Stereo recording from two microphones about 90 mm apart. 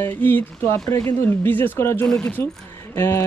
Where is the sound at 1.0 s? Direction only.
25° left (ahead or behind).